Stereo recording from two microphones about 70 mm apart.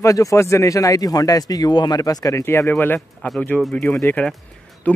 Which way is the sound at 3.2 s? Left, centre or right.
Left.